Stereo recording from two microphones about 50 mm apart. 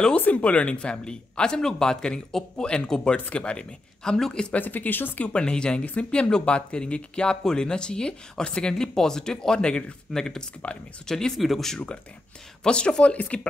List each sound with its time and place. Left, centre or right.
0.2 s speech: left
4.6 s speech: left
5.3 s speech: centre
10.6 s speech: left
11.1 s speech: centre
11.4 s speech: centre
12.6 s speech: centre